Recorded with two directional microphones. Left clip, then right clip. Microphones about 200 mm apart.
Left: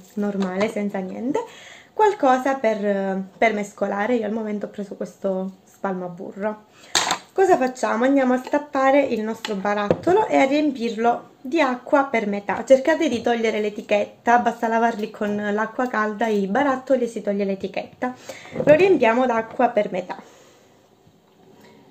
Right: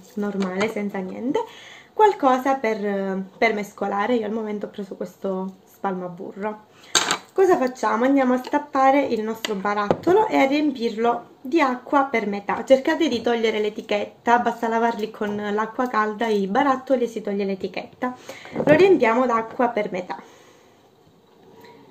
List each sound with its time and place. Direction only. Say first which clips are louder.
0.2 s a woman's voice: left 1 dB; 5° left (ahead or behind)